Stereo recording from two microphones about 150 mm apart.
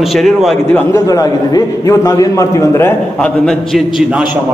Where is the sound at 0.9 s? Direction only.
25° left (ahead or behind).